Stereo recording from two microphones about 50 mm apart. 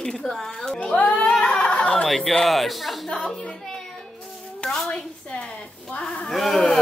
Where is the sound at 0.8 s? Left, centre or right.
Left.